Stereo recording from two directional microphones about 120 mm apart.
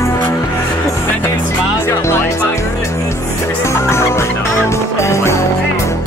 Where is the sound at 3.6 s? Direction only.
25° left (ahead or behind).